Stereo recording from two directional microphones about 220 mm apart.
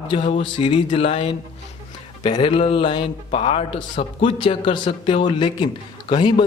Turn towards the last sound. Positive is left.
turn(degrees=20)  # may be behind; listen again after turning